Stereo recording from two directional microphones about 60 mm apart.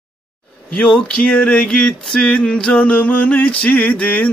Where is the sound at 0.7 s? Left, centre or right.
Centre.